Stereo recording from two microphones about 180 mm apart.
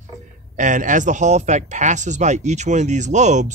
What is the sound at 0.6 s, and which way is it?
Speech, 45° right (ahead or behind).